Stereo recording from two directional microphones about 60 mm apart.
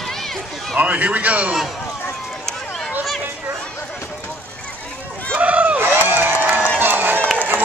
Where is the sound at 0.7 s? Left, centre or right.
Right.